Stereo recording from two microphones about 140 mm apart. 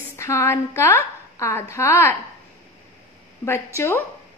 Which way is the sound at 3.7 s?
20° left (ahead or behind).